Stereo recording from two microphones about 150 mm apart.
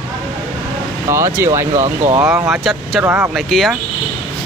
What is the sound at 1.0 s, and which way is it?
A man's voice, 20° right (ahead or behind).